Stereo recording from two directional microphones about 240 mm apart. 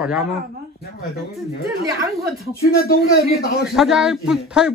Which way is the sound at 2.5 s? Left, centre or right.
Left.